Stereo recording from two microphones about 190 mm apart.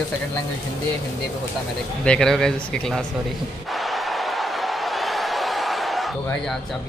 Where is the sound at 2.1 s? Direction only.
5° left (ahead or behind).